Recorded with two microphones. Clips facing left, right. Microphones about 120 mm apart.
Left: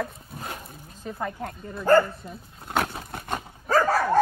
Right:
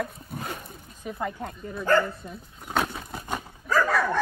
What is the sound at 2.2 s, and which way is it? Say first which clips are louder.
Dog: even; centre (ahead or behind).